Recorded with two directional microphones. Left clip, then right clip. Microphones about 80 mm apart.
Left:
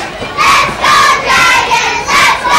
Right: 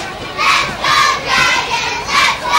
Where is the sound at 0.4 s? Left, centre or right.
Left.